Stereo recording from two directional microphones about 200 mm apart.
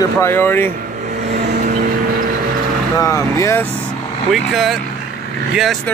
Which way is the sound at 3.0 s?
15° left (ahead or behind).